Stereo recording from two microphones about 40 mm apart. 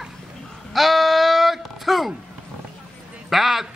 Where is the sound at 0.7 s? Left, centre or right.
Centre.